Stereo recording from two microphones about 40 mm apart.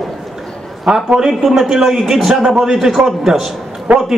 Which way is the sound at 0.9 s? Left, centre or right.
Right.